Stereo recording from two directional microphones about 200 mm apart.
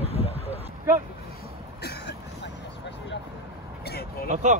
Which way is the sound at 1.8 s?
55° left (ahead or behind).